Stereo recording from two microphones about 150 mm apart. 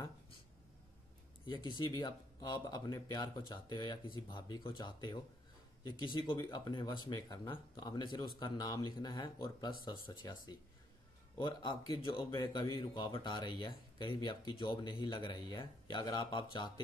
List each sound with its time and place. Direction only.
1.4 s speech: 30° left (ahead or behind)